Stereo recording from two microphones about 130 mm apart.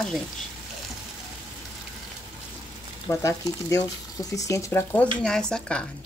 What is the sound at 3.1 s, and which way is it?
Speech, 25° left (ahead or behind).